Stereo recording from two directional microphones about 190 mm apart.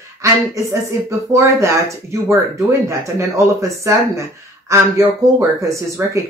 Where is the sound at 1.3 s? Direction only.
15° right (ahead or behind).